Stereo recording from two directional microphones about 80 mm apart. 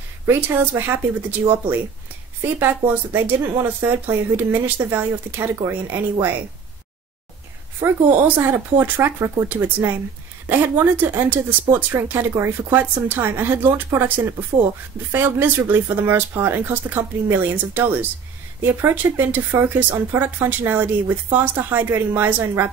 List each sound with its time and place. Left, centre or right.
0.3 s speech: right
2.4 s speech: right
7.8 s speech: right